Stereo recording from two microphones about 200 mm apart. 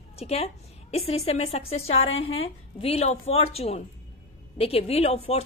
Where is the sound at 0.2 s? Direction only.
30° left (ahead or behind).